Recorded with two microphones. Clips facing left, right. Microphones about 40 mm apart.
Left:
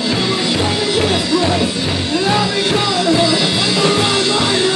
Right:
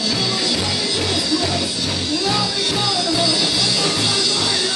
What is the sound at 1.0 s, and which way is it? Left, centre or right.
Music, left.